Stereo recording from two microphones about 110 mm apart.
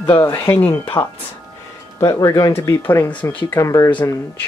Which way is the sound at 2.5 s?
20° left (ahead or behind).